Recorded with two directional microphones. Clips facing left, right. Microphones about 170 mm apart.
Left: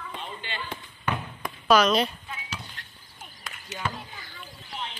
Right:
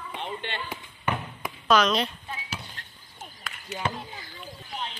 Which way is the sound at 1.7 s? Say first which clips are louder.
Left 2 dB; 5° left (ahead or behind).